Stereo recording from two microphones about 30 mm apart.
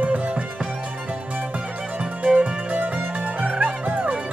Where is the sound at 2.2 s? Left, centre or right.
Right.